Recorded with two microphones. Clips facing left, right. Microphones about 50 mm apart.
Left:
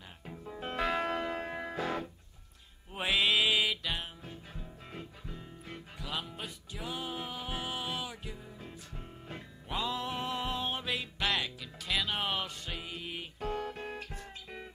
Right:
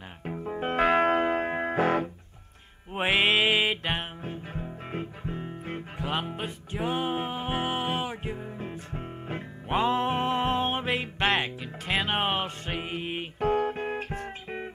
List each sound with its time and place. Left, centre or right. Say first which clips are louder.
0.2 s music: right 10 dB; right